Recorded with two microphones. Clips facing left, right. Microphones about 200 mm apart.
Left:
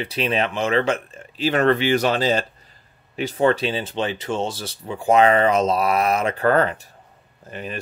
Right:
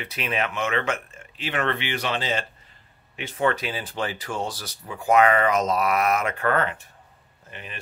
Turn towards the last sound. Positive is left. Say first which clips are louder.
# left 9 dB
turn(degrees=40)  # may be behind; listen again after turning